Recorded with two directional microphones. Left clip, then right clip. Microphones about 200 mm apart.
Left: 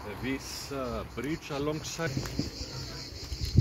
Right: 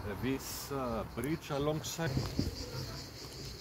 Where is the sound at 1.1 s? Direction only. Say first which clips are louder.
Left 2 dB; 60° right (ahead or behind).